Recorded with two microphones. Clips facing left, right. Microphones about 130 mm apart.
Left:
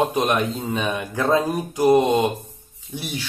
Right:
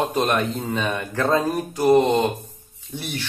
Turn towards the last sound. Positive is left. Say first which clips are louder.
# even
turn(degrees=15)  # may be behind; listen again after turning